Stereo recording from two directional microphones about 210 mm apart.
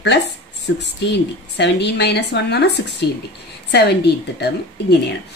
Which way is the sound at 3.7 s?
50° left (ahead or behind).